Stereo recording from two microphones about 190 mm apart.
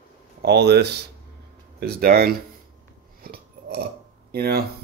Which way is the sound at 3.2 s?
55° right (ahead or behind).